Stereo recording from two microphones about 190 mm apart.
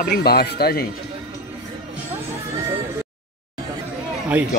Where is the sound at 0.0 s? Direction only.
55° left (ahead or behind).